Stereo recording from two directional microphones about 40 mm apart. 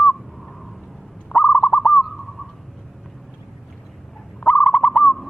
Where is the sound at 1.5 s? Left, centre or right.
Left.